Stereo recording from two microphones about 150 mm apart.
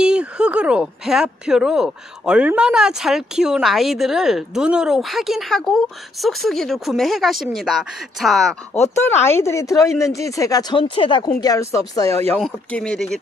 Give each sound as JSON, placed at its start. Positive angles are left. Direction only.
{"t": 0.0, "sound": "speech", "side_deg": -5}
{"t": 8.9, "sound": "speech", "side_deg": 15}
{"t": 12.4, "sound": "speech", "side_deg": 5}